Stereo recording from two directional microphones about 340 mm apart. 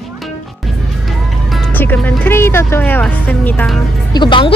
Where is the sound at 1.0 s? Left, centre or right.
Centre.